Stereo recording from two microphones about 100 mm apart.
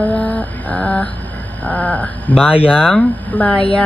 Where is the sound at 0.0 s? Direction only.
15° left (ahead or behind).